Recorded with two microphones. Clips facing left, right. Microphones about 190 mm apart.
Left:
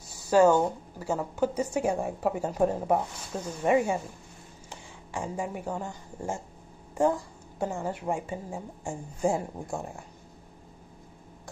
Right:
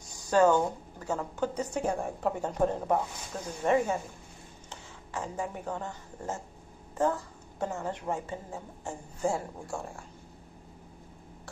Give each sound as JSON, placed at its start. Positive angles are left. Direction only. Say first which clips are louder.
{"t": 0.1, "sound": "a woman's voice", "louder": "left 3 dB", "side_deg": 10}